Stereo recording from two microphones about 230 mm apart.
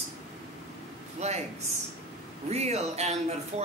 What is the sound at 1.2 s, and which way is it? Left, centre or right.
Speech, right.